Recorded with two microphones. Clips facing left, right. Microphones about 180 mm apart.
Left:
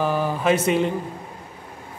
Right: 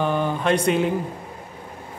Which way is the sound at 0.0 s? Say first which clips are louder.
Even; 5° left (ahead or behind).